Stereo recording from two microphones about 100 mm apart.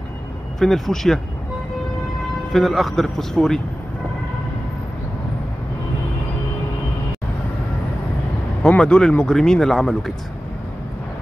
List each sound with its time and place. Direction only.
0.6 s speech: 5° left (ahead or behind)
2.5 s speech: centre (ahead or behind)
8.6 s speech: 10° left (ahead or behind)